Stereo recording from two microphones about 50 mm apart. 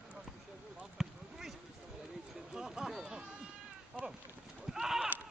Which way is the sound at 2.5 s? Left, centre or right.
Centre.